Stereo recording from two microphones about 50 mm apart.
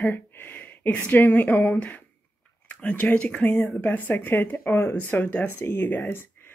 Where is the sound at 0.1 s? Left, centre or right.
Left.